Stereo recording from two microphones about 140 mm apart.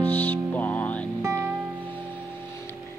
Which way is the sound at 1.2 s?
20° right (ahead or behind).